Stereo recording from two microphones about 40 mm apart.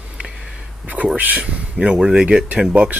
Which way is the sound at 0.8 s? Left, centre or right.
Right.